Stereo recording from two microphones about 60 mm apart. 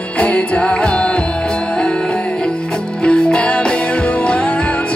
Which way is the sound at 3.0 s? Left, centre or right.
Centre.